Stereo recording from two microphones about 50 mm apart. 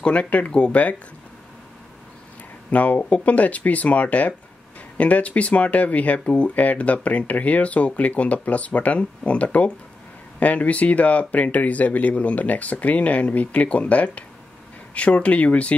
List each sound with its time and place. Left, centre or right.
0.0 s speech: left
2.7 s speech: left